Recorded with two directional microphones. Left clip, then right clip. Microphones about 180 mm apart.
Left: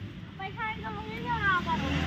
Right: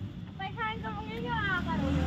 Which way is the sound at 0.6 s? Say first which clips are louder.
Even; 30° right (ahead or behind).